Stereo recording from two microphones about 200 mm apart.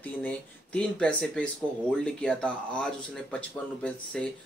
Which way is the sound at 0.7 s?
5° left (ahead or behind).